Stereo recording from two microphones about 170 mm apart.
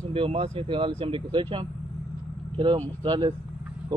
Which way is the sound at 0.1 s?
30° right (ahead or behind).